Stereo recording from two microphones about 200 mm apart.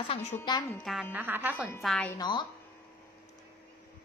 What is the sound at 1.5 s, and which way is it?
Speech, 5° left (ahead or behind).